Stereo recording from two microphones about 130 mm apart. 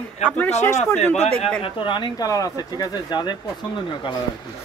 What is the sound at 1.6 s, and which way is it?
Speech, 40° left (ahead or behind).